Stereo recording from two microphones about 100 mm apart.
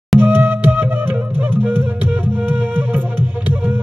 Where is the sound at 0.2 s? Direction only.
15° right (ahead or behind).